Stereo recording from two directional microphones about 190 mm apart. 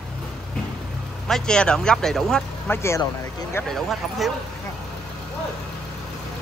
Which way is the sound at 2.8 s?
15° left (ahead or behind).